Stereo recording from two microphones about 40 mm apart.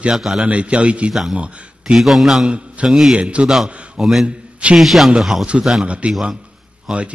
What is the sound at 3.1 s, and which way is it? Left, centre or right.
Speech, right.